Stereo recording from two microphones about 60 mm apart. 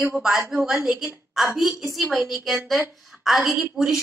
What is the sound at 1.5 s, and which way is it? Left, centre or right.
A woman's voice, centre.